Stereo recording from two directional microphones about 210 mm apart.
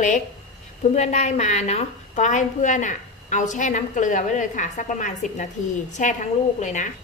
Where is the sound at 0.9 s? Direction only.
35° left (ahead or behind).